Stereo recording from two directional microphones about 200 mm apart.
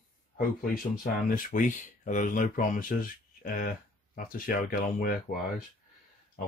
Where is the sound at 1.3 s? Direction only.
45° left (ahead or behind).